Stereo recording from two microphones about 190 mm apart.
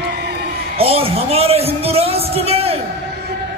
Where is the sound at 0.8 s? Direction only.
30° right (ahead or behind).